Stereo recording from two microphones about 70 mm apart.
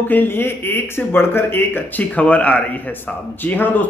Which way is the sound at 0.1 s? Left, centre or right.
Left.